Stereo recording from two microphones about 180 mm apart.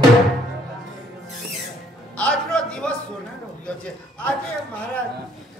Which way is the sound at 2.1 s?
5° left (ahead or behind).